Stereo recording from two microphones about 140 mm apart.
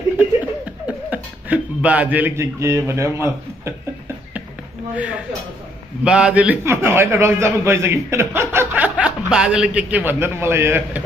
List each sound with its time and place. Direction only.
0.8 s speech: 10° right (ahead or behind)
4.9 s a man's voice: 10° right (ahead or behind)